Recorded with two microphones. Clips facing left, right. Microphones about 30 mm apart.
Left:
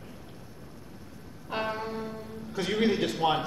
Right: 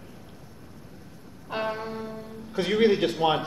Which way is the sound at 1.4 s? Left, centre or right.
Centre.